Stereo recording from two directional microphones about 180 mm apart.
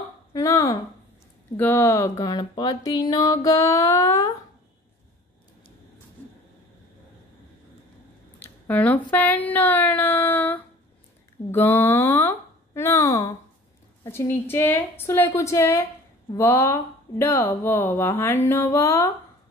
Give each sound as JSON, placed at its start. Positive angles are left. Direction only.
{"t": 0.3, "sound": "a sound", "side_deg": 20}
{"t": 1.6, "sound": "speech", "side_deg": 10}
{"t": 8.6, "sound": "speech", "side_deg": 10}